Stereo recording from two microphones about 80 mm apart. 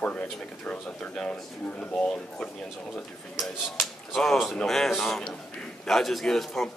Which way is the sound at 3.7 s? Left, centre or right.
Centre.